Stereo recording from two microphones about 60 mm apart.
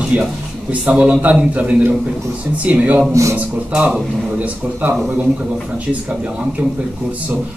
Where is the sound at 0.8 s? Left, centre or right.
Right.